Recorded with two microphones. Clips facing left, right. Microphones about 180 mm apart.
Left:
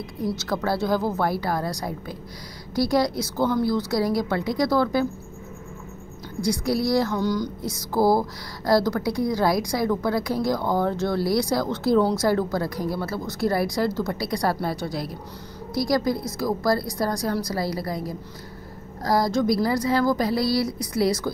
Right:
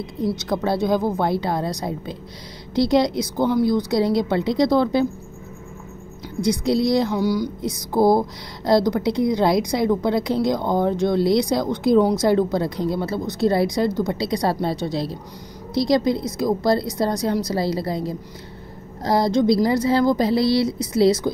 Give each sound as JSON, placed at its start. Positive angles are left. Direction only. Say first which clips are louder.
{"t": 0.3, "sound": "speech", "louder": "right 2 dB", "side_deg": -20}
{"t": 6.4, "sound": "speech", "louder": "right 4 dB", "side_deg": -20}